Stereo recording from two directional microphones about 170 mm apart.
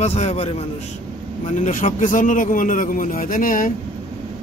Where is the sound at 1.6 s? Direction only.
50° left (ahead or behind).